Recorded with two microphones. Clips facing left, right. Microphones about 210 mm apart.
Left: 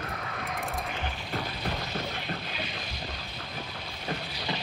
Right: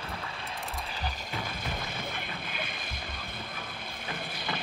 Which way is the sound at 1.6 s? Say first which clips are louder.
Left 4 dB; 50° right (ahead or behind).